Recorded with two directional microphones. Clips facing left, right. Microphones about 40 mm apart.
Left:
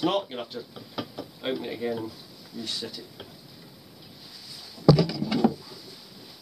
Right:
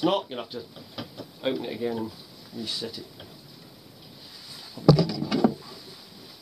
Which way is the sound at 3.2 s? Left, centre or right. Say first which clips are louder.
Left 2 dB; centre.